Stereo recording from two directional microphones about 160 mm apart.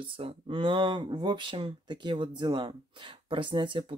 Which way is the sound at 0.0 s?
35° right (ahead or behind).